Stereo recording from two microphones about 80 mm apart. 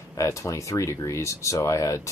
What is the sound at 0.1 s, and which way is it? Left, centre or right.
Speech, left.